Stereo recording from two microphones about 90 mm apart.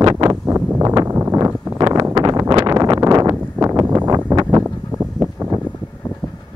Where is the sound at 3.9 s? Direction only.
50° right (ahead or behind).